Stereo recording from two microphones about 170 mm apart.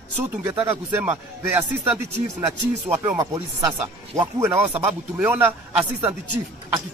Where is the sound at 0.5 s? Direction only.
10° right (ahead or behind).